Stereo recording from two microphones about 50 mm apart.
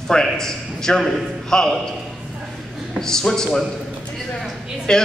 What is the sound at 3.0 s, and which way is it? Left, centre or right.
Speech, centre.